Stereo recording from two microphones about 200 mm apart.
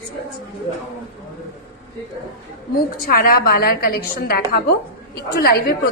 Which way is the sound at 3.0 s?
50° left (ahead or behind).